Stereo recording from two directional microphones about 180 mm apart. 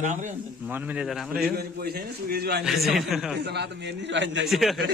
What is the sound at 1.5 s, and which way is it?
A man's voice, 60° right (ahead or behind).